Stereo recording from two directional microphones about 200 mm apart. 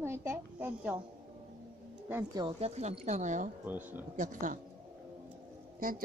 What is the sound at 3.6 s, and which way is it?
Speech, 10° right (ahead or behind).